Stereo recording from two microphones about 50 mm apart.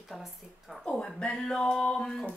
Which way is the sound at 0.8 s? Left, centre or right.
Centre.